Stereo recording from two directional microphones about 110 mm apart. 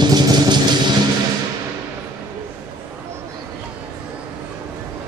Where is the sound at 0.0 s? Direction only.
40° right (ahead or behind).